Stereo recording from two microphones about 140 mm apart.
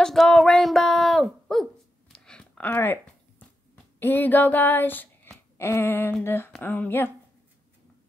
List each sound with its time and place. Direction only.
0.0 s speech: 5° left (ahead or behind)
1.5 s dog: 5° left (ahead or behind)
2.1 s a sound: 5° left (ahead or behind)